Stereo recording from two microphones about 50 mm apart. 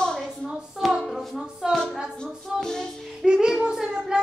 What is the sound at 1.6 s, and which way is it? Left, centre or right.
Speech, centre.